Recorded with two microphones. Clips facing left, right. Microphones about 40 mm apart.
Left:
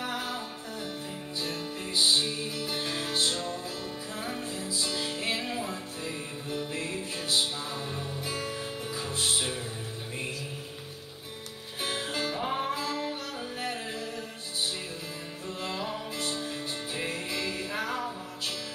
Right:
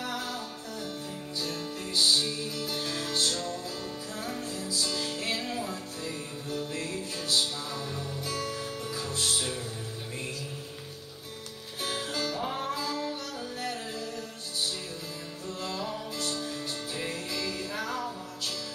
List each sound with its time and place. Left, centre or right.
0.0 s music: left
11.8 s music: left
15.4 s music: left